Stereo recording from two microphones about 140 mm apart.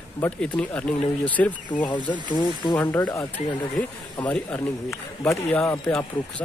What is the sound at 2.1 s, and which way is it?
Speech, 35° left (ahead or behind).